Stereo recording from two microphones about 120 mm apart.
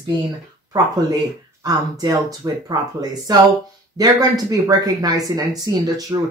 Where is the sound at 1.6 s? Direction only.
30° right (ahead or behind).